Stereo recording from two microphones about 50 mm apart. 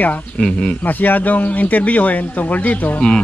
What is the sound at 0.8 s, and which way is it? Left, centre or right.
Speech, left.